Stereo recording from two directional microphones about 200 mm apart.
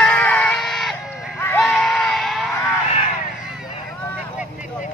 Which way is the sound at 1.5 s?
Centre (ahead or behind).